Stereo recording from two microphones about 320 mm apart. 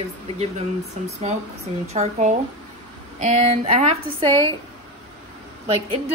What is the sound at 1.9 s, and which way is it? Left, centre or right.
Speech, right.